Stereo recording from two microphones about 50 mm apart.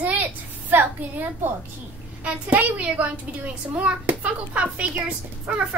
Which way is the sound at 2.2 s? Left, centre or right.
Right.